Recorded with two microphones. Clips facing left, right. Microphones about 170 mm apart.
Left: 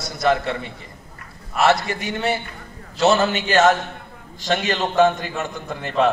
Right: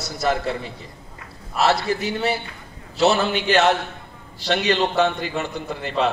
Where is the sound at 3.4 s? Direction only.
45° left (ahead or behind).